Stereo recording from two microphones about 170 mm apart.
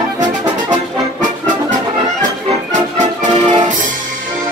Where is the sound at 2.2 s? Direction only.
45° right (ahead or behind).